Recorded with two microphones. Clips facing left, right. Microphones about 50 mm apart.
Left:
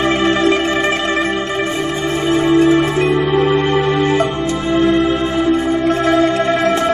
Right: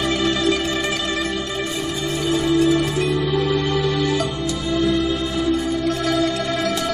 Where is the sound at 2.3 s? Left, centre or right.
Left.